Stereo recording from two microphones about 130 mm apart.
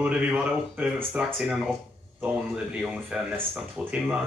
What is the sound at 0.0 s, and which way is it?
A man's voice, 10° right (ahead or behind).